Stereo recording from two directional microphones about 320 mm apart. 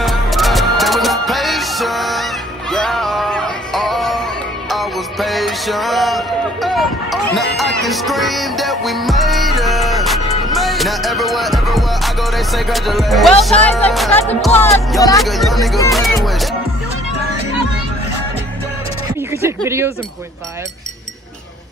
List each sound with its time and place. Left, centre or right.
0.0 s music: centre
15.2 s music: centre
19.3 s a sound: centre